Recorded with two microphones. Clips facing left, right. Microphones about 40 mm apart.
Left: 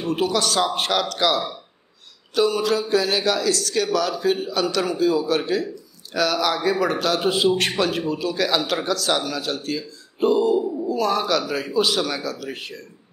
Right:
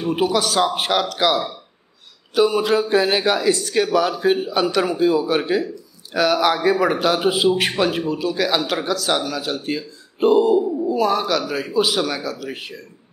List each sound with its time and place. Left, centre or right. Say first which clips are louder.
0.0 s a man's voice: right 2 dB; centre
2.6 s a man's voice: right 3 dB; right; by 9.6 s centre
9.6 s speech: right 2 dB; right
10.8 s speech: right 3 dB; centre